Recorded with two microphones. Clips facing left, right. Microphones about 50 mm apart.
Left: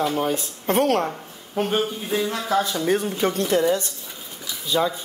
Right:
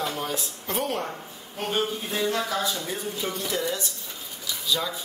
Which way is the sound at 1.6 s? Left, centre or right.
Centre.